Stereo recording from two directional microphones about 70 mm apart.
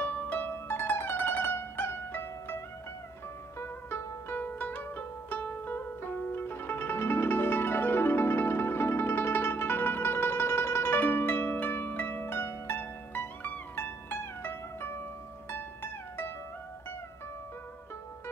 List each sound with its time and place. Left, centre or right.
0.0 s music: left